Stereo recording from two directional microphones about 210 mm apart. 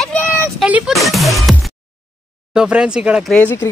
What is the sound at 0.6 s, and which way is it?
Speech, 5° right (ahead or behind).